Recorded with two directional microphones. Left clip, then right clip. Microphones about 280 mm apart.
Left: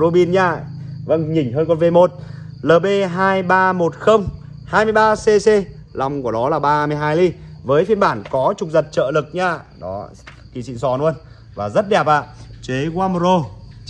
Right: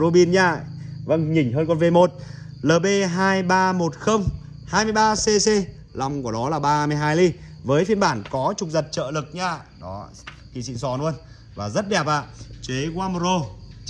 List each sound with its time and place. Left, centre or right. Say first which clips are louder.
0.0 s a man's voice: left 3 dB; right
12.6 s speech: left 7 dB; centre